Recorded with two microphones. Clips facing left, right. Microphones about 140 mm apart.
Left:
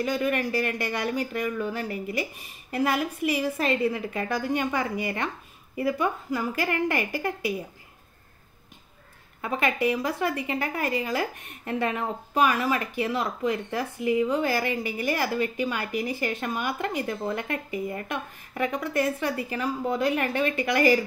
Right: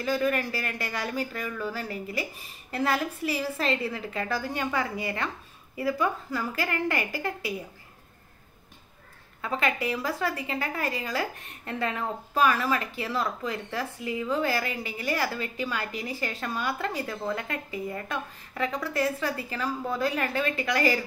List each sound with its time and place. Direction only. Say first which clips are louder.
0.0 s speech: left 1 dB; 20° left (ahead or behind)
9.4 s speech: left 3 dB; 20° left (ahead or behind)